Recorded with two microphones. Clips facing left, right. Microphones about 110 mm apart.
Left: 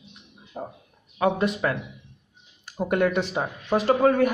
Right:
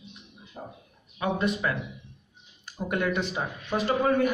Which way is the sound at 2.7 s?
55° left (ahead or behind).